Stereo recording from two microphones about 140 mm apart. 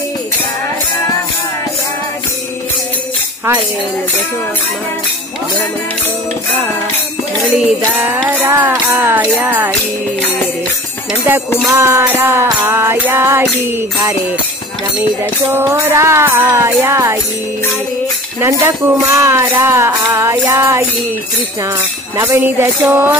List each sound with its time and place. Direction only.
7.5 s music: 10° right (ahead or behind)
11.6 s speech: 20° right (ahead or behind)
12.2 s music: 15° right (ahead or behind)
15.4 s speech: 20° right (ahead or behind)
18.4 s speech: 20° right (ahead or behind)
22.1 s music: 20° right (ahead or behind)